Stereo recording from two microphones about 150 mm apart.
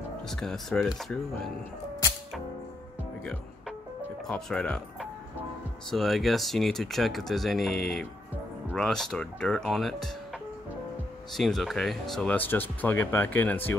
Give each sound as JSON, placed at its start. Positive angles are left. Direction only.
{"t": 0.3, "sound": "speech", "side_deg": 5}
{"t": 4.3, "sound": "speech", "side_deg": 5}
{"t": 5.9, "sound": "speech", "side_deg": 0}
{"t": 11.3, "sound": "speech", "side_deg": 0}